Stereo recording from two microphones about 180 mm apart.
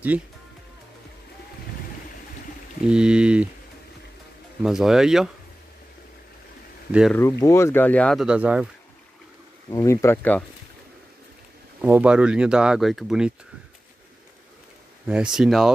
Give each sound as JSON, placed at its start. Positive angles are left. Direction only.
{"t": 2.9, "sound": "speech", "side_deg": -5}
{"t": 4.6, "sound": "speech", "side_deg": -5}
{"t": 6.9, "sound": "speech", "side_deg": -5}
{"t": 7.2, "sound": "speech", "side_deg": 15}
{"t": 9.7, "sound": "speech", "side_deg": 15}
{"t": 11.8, "sound": "speech", "side_deg": -10}
{"t": 15.0, "sound": "speech", "side_deg": -5}